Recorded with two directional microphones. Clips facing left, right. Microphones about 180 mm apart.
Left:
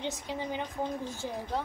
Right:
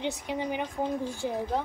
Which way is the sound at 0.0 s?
15° right (ahead or behind).